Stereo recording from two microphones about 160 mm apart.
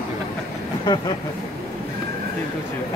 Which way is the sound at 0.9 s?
30° left (ahead or behind).